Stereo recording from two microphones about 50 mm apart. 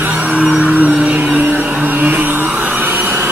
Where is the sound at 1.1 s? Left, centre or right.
Right.